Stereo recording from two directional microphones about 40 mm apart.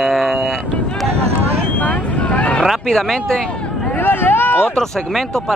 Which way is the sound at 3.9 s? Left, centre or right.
Left.